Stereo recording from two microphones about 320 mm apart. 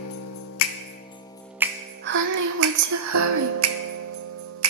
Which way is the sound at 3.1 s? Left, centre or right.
Right.